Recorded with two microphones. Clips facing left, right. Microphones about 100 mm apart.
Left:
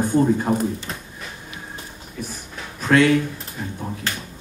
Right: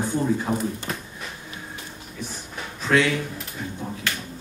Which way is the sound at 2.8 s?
50° left (ahead or behind).